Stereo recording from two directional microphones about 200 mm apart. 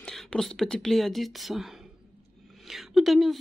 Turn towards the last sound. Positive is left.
turn(degrees=0)  # may be behind; listen again after turning